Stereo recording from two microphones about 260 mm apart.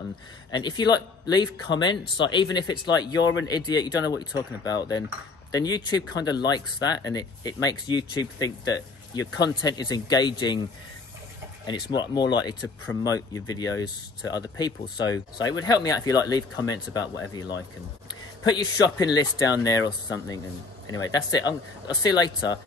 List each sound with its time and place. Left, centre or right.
0.5 s speech: centre
11.6 s speech: centre